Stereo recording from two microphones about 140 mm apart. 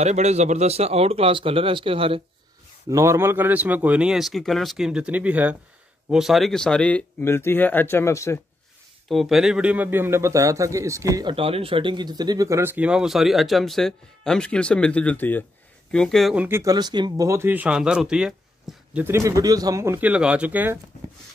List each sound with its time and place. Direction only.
0.0 s speech: 55° right (ahead or behind)
2.9 s a man's voice: 20° right (ahead or behind); by 8.4 s 20° left (ahead or behind)
9.1 s a man's voice: centre (ahead or behind); by 11.3 s 25° right (ahead or behind)
11.3 s speech: 40° right (ahead or behind); by 16.3 s centre (ahead or behind)
16.3 s a man's voice: 15° right (ahead or behind)
16.7 s a man's voice: 30° right (ahead or behind)
17.3 s speech: 15° right (ahead or behind)
19.0 s a man's voice: 20° right (ahead or behind)